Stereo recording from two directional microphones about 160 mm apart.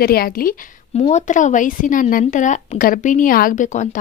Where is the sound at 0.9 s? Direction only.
45° left (ahead or behind).